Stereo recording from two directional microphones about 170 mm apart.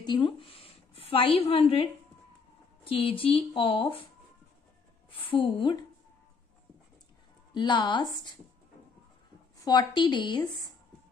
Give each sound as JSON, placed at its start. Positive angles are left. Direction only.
{"t": 0.0, "sound": "a woman's voice", "side_deg": 25}
{"t": 5.1, "sound": "speech", "side_deg": 30}
{"t": 7.5, "sound": "a woman's voice", "side_deg": 25}
{"t": 9.7, "sound": "a woman's voice", "side_deg": 25}